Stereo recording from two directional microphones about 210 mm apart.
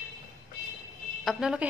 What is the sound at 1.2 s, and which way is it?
Speech, 5° right (ahead or behind).